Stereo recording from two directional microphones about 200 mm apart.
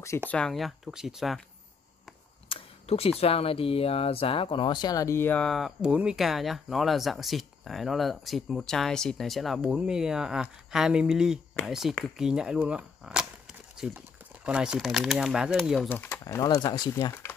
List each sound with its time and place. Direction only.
0.3 s speech: 5° left (ahead or behind)
2.5 s speech: 30° left (ahead or behind); by 15.9 s centre (ahead or behind)
15.9 s speech: 10° left (ahead or behind)